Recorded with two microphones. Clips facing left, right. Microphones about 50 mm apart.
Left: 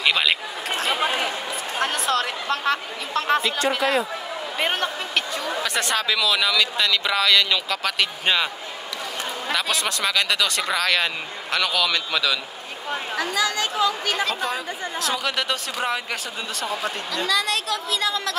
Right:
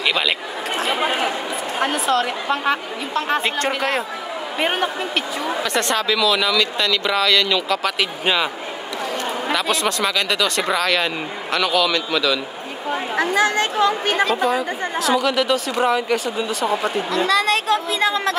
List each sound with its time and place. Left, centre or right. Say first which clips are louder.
0.0 s a woman's voice: right 1 dB; centre
3.4 s speech: right 1 dB; right
4.6 s a woman's voice: right 4 dB; centre
5.7 s speech: right 3 dB; centre
9.5 s speech: right 3 dB; centre
12.9 s speech: right 6 dB; right
14.2 s speech: right 7 dB; centre
17.3 s speech: right 5 dB; right